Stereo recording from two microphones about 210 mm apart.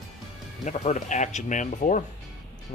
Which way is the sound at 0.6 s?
35° left (ahead or behind).